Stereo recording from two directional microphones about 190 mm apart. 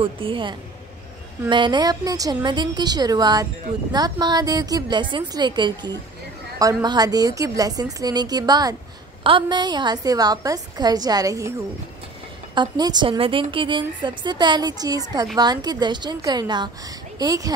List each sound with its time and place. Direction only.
0.0 s a woman's voice: 30° right (ahead or behind)
12.5 s a woman's voice: 20° right (ahead or behind)